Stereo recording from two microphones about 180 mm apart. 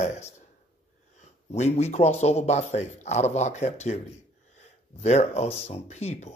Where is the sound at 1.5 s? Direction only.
40° left (ahead or behind).